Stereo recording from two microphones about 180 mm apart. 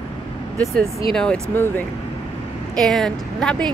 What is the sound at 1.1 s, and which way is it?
A woman's voice, 5° left (ahead or behind).